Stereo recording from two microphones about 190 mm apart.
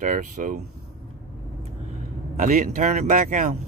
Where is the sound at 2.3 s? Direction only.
45° right (ahead or behind).